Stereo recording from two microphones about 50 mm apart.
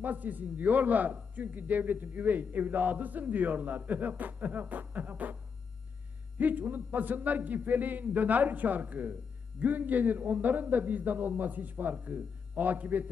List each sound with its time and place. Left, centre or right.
0.0 s a man's voice: right